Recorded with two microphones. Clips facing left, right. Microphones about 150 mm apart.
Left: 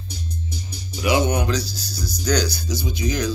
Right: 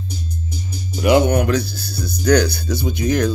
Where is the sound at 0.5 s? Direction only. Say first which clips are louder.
Right 5 dB; 50° right (ahead or behind).